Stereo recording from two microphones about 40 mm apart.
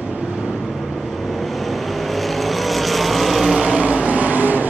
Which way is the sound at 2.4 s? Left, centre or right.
Centre.